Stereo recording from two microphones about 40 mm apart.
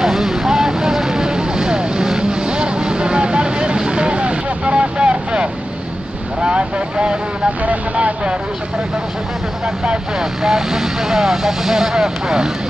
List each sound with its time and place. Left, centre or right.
0.0 s vehicle: centre; by 5.5 s right
6.4 s speech: right
7.6 s speech: right
10.4 s speech: centre